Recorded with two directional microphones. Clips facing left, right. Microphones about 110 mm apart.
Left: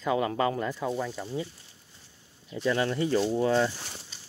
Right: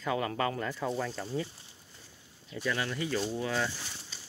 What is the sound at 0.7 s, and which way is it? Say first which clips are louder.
Speech: left 2 dB; 10° left (ahead or behind).